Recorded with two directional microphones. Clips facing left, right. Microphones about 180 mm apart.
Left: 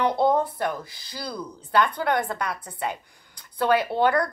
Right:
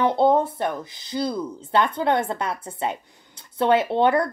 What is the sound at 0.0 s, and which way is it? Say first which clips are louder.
Speech: right 3 dB; 25° right (ahead or behind).